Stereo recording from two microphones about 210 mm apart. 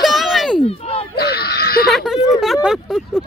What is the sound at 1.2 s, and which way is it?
Speech, 50° left (ahead or behind).